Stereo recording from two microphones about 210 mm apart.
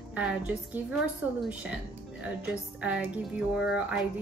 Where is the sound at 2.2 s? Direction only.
5° right (ahead or behind).